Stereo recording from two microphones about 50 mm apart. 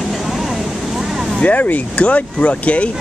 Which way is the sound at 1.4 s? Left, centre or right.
Left.